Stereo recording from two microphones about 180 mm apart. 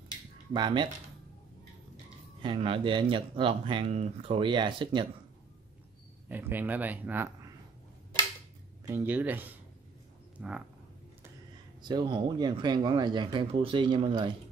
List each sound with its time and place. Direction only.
0.5 s speech: 25° right (ahead or behind)
2.4 s speech: 30° right (ahead or behind)
6.2 s speech: 10° right (ahead or behind)
8.8 s speech: 10° right (ahead or behind)
10.4 s a sound: 5° right (ahead or behind)
11.8 s speech: 25° right (ahead or behind)